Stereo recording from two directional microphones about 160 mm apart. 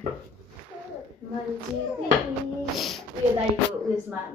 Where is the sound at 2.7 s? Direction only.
Centre (ahead or behind).